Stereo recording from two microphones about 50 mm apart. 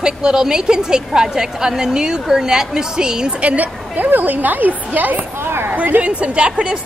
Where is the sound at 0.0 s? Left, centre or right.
Centre.